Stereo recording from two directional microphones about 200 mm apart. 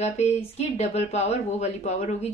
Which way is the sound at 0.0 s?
35° left (ahead or behind).